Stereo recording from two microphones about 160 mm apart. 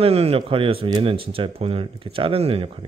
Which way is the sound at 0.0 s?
40° right (ahead or behind).